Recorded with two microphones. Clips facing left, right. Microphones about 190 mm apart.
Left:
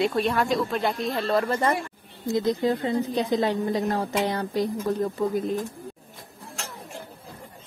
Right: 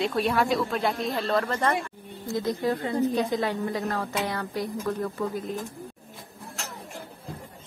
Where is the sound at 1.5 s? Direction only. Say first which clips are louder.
Left 2 dB; 15° left (ahead or behind).